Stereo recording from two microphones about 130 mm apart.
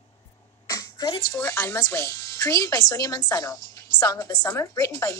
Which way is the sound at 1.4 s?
20° left (ahead or behind).